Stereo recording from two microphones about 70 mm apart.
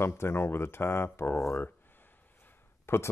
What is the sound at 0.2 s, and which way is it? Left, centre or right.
Speech, left.